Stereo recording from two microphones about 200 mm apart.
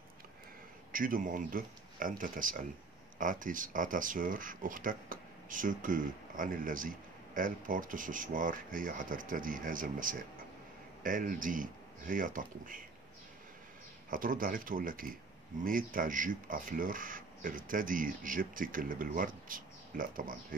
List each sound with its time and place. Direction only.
0.9 s speech: 45° right (ahead or behind)
14.1 s speech: 45° right (ahead or behind)